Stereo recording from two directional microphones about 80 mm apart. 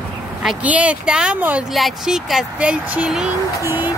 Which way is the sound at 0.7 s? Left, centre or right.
Centre.